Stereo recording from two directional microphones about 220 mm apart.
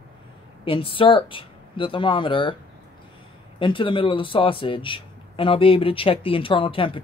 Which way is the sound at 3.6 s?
20° left (ahead or behind).